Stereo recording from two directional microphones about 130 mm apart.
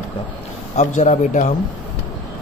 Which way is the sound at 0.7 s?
70° left (ahead or behind).